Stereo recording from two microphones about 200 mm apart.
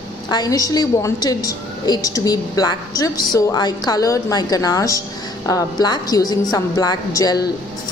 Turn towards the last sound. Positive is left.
turn(degrees=20)  # may be behind; listen again after turning